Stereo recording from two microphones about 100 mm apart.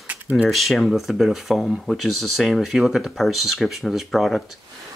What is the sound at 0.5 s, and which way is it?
Speech, centre (ahead or behind).